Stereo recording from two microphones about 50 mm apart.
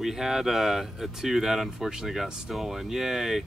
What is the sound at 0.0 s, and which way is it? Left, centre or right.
Speech, centre.